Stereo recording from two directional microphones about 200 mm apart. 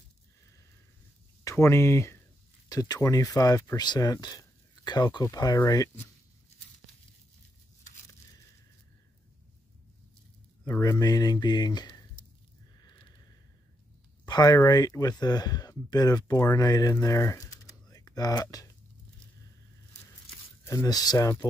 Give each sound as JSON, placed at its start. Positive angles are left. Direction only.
{"t": 1.4, "sound": "speech", "side_deg": 15}
{"t": 10.6, "sound": "speech", "side_deg": 15}
{"t": 14.2, "sound": "speech", "side_deg": 20}
{"t": 20.6, "sound": "speech", "side_deg": 15}